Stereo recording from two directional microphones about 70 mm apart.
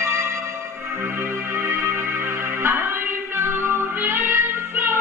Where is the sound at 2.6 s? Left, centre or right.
Right.